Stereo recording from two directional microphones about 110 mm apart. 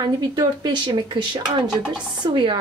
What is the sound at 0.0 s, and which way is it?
A woman's voice, 40° right (ahead or behind).